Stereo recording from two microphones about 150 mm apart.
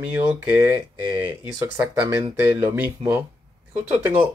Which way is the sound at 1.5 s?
20° right (ahead or behind).